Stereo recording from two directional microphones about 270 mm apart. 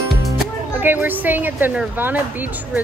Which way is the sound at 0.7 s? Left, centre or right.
Centre.